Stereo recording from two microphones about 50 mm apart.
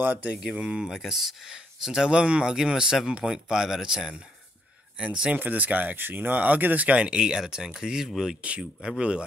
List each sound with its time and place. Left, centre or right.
0.0 s speech: right
0.6 s speech: centre
5.3 s speech: right; by 9.2 s centre